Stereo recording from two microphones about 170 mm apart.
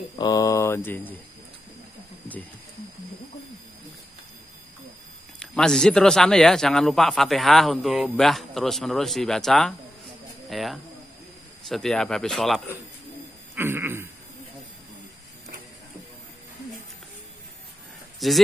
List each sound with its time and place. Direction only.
0.1 s speech: 20° left (ahead or behind)
5.4 s a man's voice: 5° left (ahead or behind)
13.6 s a sound: 15° right (ahead or behind)
18.2 s speech: centre (ahead or behind)